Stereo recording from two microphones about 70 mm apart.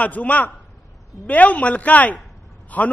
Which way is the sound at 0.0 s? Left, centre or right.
Left.